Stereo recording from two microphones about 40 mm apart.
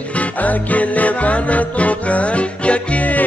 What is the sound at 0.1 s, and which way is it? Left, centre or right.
Music, left.